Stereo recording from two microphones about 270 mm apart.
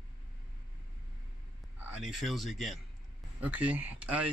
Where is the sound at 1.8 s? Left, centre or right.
Centre.